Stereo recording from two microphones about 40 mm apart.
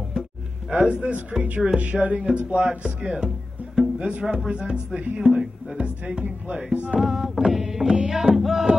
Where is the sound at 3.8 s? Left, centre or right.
Right.